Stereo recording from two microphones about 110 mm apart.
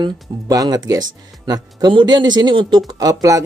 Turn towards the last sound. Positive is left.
turn(degrees=-30)  # may be behind; listen again after turning